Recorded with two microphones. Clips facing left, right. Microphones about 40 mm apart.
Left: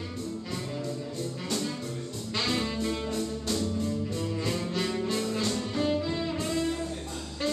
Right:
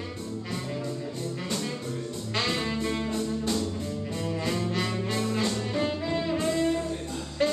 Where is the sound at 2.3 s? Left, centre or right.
Centre.